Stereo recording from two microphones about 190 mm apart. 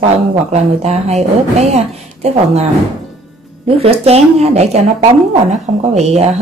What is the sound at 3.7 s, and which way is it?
A woman's voice, 30° right (ahead or behind).